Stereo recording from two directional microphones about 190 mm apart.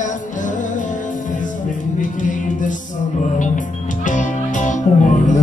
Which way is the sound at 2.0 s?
40° left (ahead or behind).